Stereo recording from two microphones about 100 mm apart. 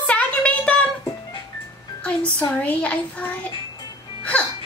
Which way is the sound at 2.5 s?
15° left (ahead or behind).